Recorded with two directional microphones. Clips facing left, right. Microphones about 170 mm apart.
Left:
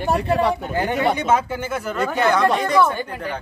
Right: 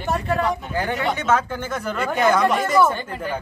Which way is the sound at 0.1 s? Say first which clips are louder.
Left 3 dB; 30° left (ahead or behind).